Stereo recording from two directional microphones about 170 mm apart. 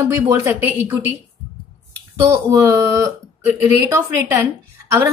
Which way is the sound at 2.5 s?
15° right (ahead or behind).